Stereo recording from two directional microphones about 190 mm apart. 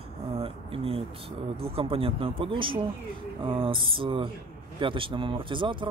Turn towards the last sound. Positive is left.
turn(degrees=-25)  # may be behind; listen again after turning